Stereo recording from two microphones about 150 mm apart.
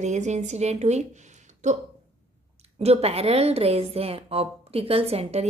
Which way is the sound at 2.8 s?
45° right (ahead or behind).